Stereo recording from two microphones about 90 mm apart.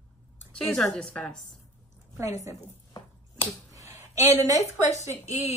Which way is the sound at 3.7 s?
35° right (ahead or behind).